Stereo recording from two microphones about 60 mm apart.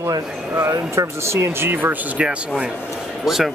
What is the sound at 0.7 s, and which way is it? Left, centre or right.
Speech, right.